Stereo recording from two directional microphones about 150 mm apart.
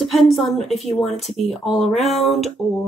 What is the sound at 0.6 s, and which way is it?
Speech, 45° left (ahead or behind).